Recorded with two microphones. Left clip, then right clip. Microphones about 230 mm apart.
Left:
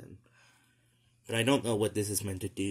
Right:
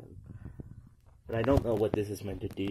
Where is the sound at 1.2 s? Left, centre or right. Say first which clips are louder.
Right 1 dB; left.